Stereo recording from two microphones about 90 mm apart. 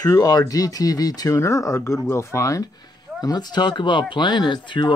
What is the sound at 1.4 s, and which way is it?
Speech, 35° left (ahead or behind).